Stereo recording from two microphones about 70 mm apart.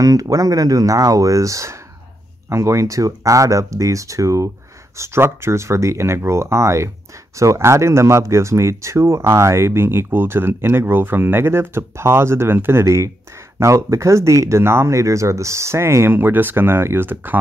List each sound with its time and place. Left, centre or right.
0.0 s speech: right